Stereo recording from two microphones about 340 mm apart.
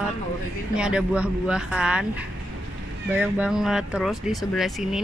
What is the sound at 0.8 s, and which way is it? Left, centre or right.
Speech, centre.